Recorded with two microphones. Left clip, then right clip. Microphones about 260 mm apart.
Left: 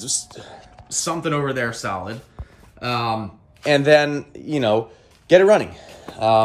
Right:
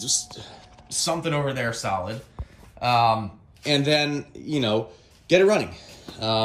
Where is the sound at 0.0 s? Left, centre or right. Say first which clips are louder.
Right 1 dB; left.